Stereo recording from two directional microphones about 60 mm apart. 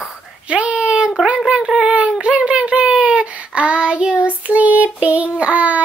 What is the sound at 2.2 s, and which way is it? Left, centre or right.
Child singing, centre.